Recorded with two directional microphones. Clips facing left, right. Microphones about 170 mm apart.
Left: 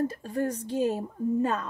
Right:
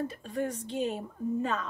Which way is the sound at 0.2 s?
45° left (ahead or behind).